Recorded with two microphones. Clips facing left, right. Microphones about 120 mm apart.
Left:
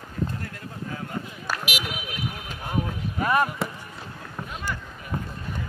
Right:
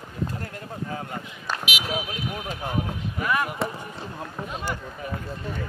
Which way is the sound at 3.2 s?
35° left (ahead or behind).